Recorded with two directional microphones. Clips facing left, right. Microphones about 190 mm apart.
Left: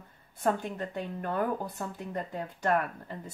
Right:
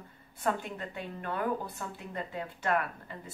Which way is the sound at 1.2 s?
45° left (ahead or behind).